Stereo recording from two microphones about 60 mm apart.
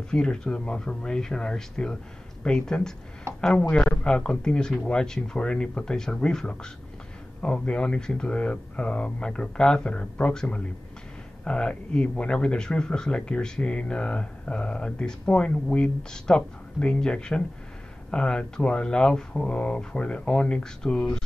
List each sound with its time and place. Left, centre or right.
0.1 s speech: centre